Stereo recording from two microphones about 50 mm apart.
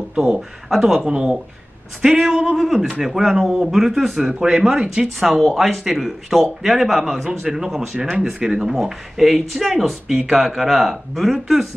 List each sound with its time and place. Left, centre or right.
0.1 s speech: right
0.7 s speech: centre
0.9 s speech: centre